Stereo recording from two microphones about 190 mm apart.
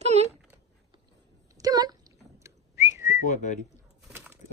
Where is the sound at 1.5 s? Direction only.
20° right (ahead or behind).